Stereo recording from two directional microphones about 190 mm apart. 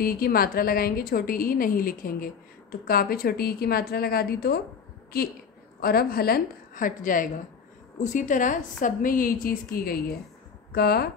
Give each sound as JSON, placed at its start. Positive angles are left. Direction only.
{"t": 0.0, "sound": "a woman's voice", "side_deg": 50}